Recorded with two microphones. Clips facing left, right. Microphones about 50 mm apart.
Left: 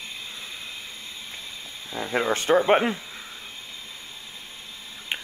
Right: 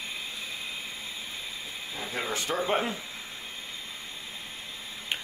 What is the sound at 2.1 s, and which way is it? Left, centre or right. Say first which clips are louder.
Speech: left 10 dB; left.